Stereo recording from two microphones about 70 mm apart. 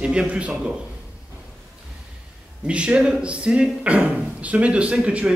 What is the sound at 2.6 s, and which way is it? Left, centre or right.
Speech, centre.